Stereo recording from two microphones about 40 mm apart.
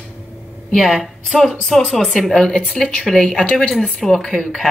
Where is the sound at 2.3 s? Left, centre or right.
Left.